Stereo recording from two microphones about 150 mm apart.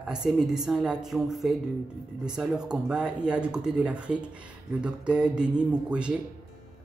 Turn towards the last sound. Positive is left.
turn(degrees=-5)  # may be behind; listen again after turning